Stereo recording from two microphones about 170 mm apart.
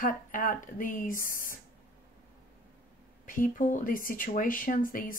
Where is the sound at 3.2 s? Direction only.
50° left (ahead or behind).